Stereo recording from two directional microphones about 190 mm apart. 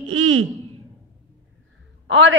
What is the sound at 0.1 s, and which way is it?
Speech, 90° right.